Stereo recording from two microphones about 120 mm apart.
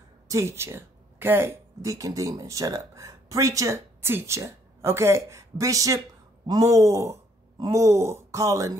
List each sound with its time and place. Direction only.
0.3 s speech: 25° right (ahead or behind)